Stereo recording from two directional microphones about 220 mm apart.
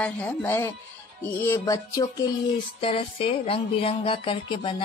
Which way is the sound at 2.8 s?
25° left (ahead or behind).